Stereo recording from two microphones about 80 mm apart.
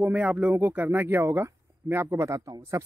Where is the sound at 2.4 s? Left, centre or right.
Right.